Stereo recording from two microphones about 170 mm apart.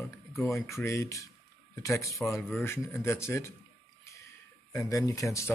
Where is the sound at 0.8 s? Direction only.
20° left (ahead or behind).